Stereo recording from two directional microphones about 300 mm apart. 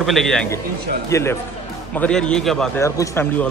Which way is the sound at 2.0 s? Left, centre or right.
Centre.